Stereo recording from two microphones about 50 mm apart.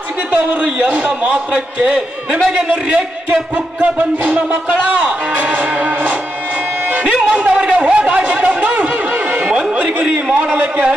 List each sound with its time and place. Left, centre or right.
0.4 s a man's voice: right
5.6 s music: right
7.1 s a sound: right
9.3 s chatter: right
10.3 s a man's voice: right